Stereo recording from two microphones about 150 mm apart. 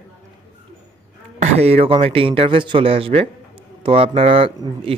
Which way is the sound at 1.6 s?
40° right (ahead or behind).